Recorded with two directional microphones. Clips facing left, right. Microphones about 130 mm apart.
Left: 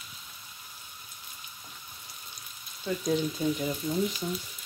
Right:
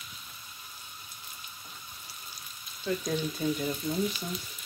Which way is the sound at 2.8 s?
10° left (ahead or behind).